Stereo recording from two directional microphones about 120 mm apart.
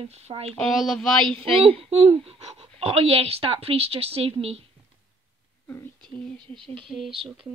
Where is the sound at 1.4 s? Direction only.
50° right (ahead or behind).